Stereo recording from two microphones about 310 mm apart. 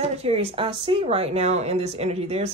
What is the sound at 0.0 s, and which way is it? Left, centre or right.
Speech, centre.